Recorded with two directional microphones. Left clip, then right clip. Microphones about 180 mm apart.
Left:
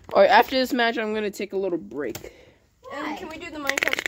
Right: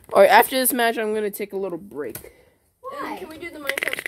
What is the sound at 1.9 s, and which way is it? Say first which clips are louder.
Speech: left 1 dB; 20° left (ahead or behind).